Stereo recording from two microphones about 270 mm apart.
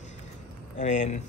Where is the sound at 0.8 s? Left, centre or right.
Left.